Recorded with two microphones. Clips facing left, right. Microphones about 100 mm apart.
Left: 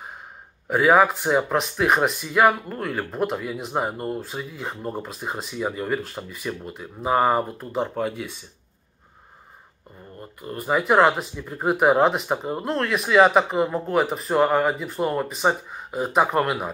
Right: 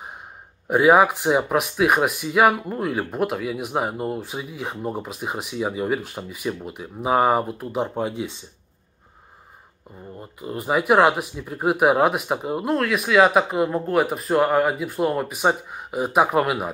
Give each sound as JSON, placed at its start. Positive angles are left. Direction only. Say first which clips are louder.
{"t": 0.7, "sound": "speech", "louder": "right 2 dB", "side_deg": -15}
{"t": 10.1, "sound": "speech", "louder": "right 2 dB", "side_deg": -15}